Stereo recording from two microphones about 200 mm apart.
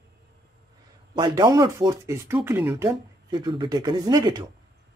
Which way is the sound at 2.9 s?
20° right (ahead or behind).